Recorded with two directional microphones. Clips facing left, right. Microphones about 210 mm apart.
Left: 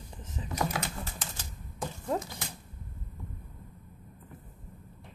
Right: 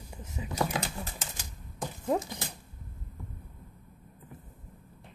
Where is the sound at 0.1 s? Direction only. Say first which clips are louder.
Right 2 dB; 10° right (ahead or behind).